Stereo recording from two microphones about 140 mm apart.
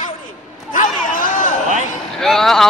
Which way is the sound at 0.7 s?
70° left (ahead or behind).